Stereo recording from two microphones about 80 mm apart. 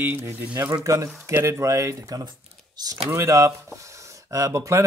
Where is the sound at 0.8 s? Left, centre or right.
Right.